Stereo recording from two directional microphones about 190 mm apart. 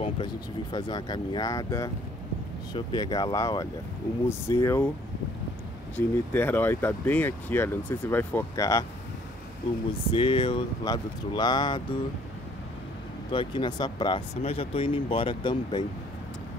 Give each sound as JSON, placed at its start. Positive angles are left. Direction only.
{"t": 0.0, "sound": "speech", "side_deg": 25}
{"t": 5.9, "sound": "speech", "side_deg": 10}
{"t": 10.1, "sound": "speech", "side_deg": 25}
{"t": 13.3, "sound": "speech", "side_deg": 25}